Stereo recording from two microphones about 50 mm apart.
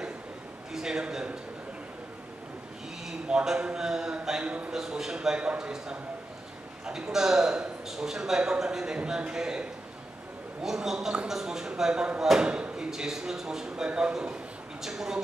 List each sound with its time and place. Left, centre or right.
0.7 s a man's voice: centre
3.1 s a man's voice: centre
4.7 s a man's voice: centre
6.9 s a man's voice: centre